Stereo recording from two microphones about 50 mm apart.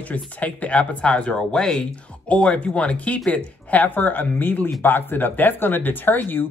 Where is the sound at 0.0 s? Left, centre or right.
Left.